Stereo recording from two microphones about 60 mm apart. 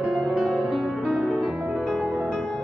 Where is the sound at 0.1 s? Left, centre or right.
Centre.